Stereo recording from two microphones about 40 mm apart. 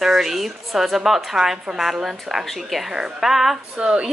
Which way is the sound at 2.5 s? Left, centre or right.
Centre.